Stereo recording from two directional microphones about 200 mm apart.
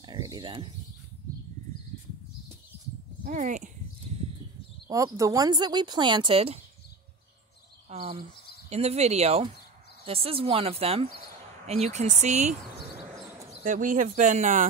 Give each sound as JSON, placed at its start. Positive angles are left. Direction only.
{"t": 0.0, "sound": "a sound", "side_deg": -20}
{"t": 3.3, "sound": "speech", "side_deg": -40}
{"t": 4.8, "sound": "speech", "side_deg": -15}
{"t": 7.9, "sound": "speech", "side_deg": -30}